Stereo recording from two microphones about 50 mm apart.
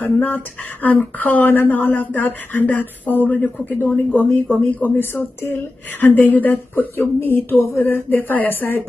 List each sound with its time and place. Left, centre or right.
0.0 s speech: left
3.9 s speech: left